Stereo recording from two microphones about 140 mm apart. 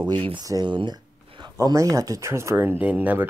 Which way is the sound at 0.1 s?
35° right (ahead or behind).